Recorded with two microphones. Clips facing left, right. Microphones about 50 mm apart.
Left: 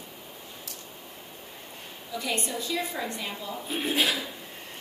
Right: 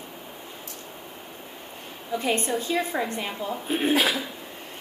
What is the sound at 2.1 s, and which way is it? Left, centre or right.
A woman's voice, right.